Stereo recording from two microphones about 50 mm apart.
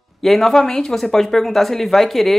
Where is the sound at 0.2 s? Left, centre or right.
Centre.